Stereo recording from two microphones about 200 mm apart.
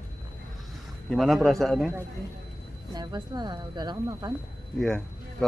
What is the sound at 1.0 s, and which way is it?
Speech, centre (ahead or behind).